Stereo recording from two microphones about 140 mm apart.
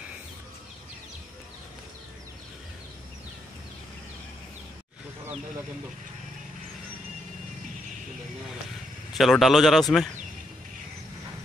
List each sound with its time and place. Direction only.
9.1 s speech: centre (ahead or behind)